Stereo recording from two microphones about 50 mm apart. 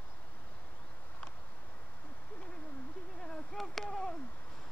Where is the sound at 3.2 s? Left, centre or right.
Centre.